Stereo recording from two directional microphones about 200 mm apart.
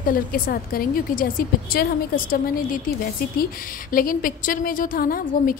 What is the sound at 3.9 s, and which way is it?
A woman's voice, 45° left (ahead or behind).